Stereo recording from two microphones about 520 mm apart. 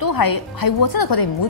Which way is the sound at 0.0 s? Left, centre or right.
Left.